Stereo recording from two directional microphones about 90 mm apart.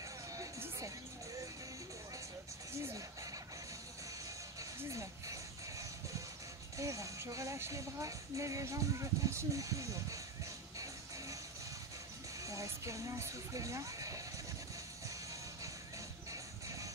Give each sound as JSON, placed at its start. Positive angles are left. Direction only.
{"t": 0.6, "sound": "music", "side_deg": -35}
{"t": 4.6, "sound": "music", "side_deg": -35}
{"t": 6.8, "sound": "speech", "side_deg": -35}
{"t": 12.4, "sound": "speech", "side_deg": -35}
{"t": 16.3, "sound": "music", "side_deg": -35}